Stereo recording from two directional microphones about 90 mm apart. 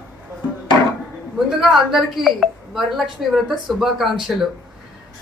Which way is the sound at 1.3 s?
5° right (ahead or behind).